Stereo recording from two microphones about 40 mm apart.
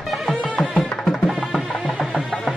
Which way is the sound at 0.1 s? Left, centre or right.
Centre.